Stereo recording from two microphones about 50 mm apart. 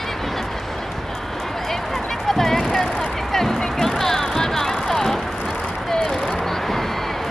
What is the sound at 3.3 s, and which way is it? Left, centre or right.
Music, centre.